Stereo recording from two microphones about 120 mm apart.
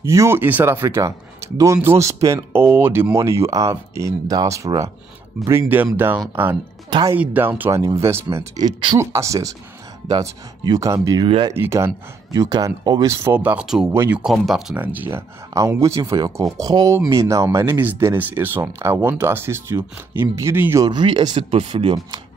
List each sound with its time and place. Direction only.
0.0 s speech: 25° right (ahead or behind)
7.2 s speech: 15° right (ahead or behind)
8.5 s speech: 35° right (ahead or behind)
13.1 s speech: 20° right (ahead or behind); by 14.8 s centre (ahead or behind)
14.8 s speech: 15° right (ahead or behind)
20.8 s speech: 40° right (ahead or behind)